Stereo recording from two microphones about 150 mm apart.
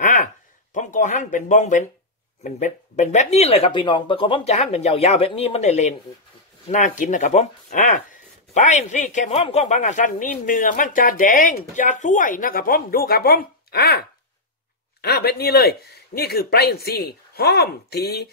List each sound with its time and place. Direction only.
0.0 s a sound: 70° left (ahead or behind)
0.7 s speech: 55° left (ahead or behind); by 4.6 s 35° left (ahead or behind)
4.6 s speech: 45° left (ahead or behind); by 18.3 s 90° left